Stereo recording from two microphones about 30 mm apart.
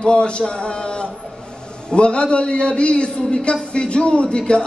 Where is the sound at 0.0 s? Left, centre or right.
Left.